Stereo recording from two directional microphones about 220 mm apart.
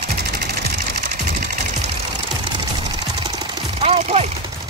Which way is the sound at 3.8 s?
30° right (ahead or behind).